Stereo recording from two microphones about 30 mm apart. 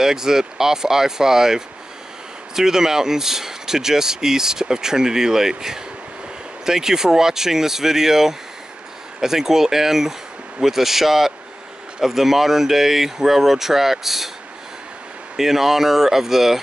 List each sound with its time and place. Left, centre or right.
0.0 s speech: centre
15.3 s speech: centre